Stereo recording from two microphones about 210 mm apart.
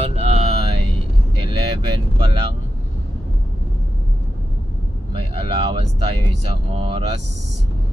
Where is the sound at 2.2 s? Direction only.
25° right (ahead or behind).